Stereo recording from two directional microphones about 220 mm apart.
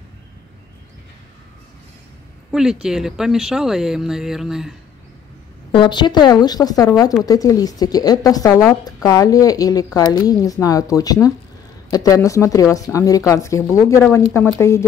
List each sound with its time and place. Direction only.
2.5 s speech: centre (ahead or behind)
5.7 s a woman's voice: 20° left (ahead or behind)